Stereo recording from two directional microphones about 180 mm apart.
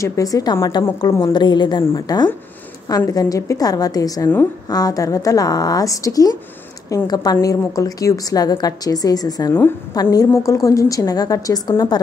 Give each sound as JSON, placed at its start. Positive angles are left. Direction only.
{"t": 0.0, "sound": "a woman's voice", "side_deg": 20}